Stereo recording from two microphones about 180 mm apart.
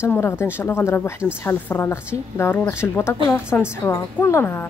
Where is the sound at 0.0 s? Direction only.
15° left (ahead or behind).